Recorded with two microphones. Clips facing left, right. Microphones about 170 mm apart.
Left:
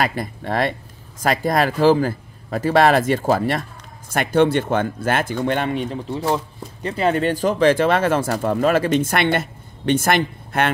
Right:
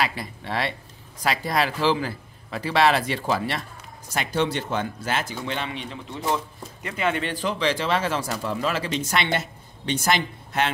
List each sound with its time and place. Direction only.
0.0 s speech: 50° left (ahead or behind)